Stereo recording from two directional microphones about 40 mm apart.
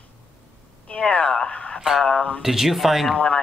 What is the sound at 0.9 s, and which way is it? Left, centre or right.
Speech, left.